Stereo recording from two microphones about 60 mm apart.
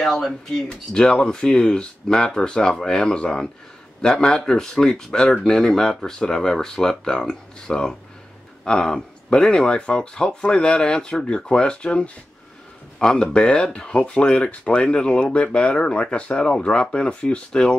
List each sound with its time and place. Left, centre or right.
0.0 s speech: centre